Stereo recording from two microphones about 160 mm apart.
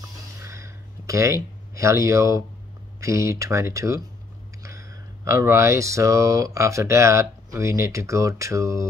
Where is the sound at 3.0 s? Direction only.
20° right (ahead or behind).